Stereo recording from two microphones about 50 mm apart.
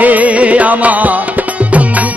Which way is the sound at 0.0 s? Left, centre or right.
Right.